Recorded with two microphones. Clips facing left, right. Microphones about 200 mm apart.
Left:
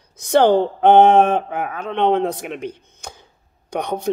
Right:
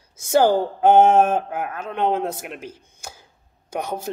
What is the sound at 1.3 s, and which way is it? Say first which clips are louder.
Speech: left 2 dB; 60° left (ahead or behind).